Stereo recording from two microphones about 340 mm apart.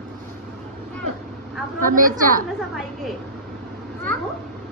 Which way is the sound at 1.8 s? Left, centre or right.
Right.